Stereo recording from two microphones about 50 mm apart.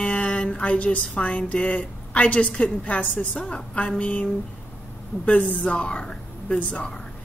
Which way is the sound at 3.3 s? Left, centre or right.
Centre.